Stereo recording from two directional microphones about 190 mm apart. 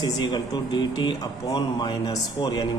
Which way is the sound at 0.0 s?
20° left (ahead or behind).